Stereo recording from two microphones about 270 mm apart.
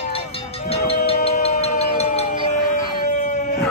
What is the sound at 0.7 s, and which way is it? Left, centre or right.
Music, left.